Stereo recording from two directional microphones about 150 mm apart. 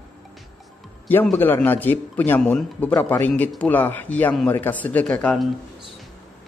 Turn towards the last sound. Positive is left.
turn(degrees=5)  # may be behind; listen again after turning